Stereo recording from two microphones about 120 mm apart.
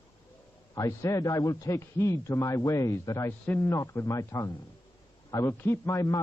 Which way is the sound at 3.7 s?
25° left (ahead or behind).